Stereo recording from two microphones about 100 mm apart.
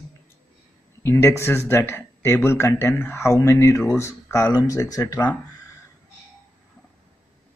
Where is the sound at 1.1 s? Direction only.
25° left (ahead or behind).